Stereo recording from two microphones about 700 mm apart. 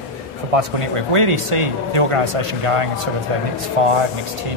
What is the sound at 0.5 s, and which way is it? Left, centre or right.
Speech, right.